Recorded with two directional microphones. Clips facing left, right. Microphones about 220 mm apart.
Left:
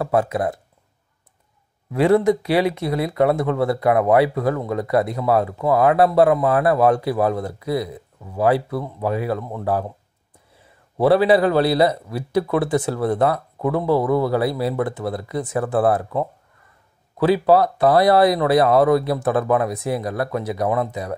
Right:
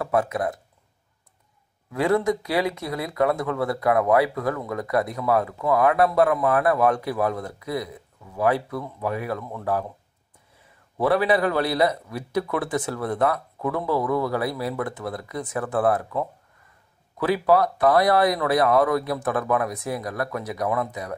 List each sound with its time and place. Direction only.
0.0 s speech: 30° left (ahead or behind)
1.9 s speech: 25° left (ahead or behind)
11.0 s speech: 30° left (ahead or behind)